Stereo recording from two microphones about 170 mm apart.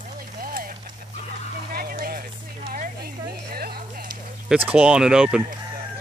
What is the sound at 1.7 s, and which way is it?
Music, 60° right (ahead or behind).